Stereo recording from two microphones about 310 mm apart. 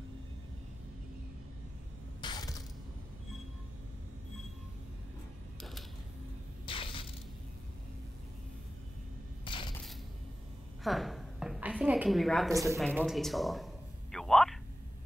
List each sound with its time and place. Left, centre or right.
2.2 s mechanisms: centre
6.6 s crushing: centre
9.4 s crushing: centre
10.8 s a sound: centre
12.5 s speech: centre
12.8 s a sound: centre